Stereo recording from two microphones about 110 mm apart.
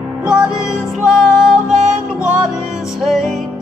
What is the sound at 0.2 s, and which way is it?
Music, 5° right (ahead or behind).